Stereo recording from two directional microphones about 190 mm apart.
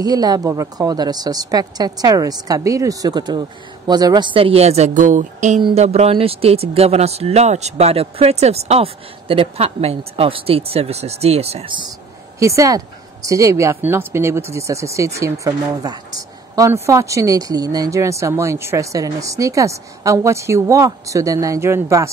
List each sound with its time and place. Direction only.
0.0 s a woman's voice: 20° right (ahead or behind); by 5.6 s 40° right (ahead or behind)
5.6 s speech: 30° right (ahead or behind)
12.4 s a woman's voice: 15° right (ahead or behind)